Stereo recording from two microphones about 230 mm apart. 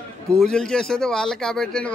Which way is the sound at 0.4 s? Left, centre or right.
Centre.